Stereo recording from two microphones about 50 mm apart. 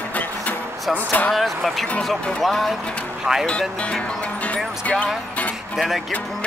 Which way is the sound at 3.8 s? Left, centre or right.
Left.